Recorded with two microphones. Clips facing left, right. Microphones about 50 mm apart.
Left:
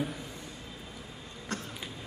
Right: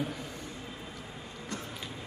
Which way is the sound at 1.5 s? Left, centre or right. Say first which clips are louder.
Left 3 dB; left.